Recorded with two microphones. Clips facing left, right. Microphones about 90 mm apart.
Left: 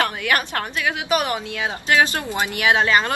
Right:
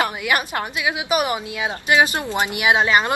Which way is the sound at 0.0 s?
10° right (ahead or behind).